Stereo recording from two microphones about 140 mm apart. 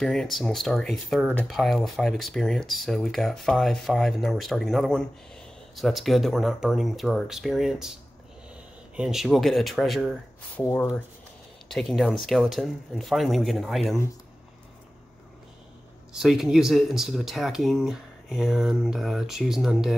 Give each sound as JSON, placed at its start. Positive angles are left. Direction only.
{"t": 0.0, "sound": "speech", "side_deg": 5}
{"t": 10.6, "sound": "speech", "side_deg": 15}
{"t": 11.7, "sound": "speech", "side_deg": 0}
{"t": 16.1, "sound": "speech", "side_deg": -5}